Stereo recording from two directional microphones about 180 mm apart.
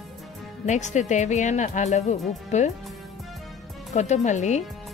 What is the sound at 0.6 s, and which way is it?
Speech, 40° left (ahead or behind).